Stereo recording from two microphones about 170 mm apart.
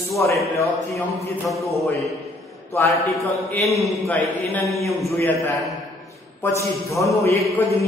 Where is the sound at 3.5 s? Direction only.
15° left (ahead or behind).